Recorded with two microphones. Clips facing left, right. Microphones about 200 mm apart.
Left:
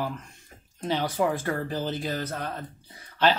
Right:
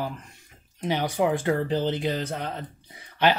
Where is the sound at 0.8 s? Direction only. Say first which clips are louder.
Right 2 dB; 15° right (ahead or behind).